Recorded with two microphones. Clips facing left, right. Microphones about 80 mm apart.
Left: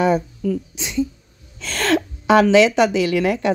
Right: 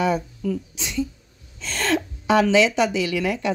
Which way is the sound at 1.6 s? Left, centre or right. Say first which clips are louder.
Left 4 dB; left.